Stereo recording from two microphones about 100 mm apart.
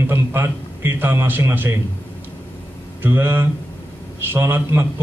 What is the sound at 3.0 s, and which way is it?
A man's voice, 20° right (ahead or behind).